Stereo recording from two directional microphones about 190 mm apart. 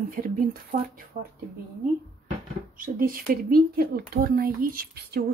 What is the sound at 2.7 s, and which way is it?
Speech, 45° right (ahead or behind).